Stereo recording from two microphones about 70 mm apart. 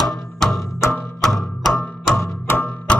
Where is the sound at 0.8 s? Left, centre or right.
Left.